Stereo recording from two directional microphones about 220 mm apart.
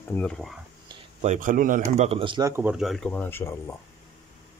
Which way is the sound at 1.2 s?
35° right (ahead or behind).